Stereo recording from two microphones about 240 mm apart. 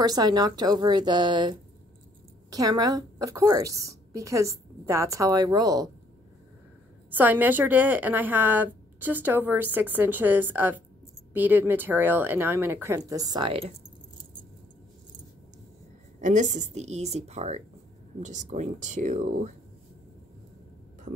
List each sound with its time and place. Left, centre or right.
0.0 s a woman's voice: centre
7.1 s a woman's voice: centre; by 13.7 s right
16.2 s a woman's voice: right